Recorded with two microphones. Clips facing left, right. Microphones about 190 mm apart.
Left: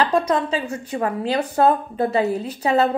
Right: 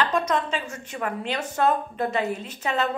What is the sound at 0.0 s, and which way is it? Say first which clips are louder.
Speech: left 5 dB; 35° left (ahead or behind).